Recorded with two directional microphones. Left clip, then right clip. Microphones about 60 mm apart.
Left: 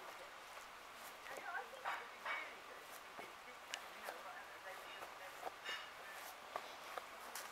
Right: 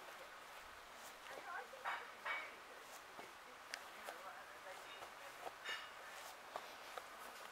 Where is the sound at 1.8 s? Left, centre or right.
Right.